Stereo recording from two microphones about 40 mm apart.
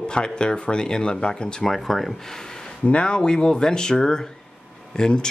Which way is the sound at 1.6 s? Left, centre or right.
Centre.